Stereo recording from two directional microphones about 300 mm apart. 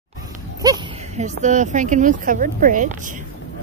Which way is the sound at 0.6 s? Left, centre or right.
Centre.